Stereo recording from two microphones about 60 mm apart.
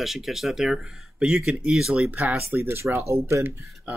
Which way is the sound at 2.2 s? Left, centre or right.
Right.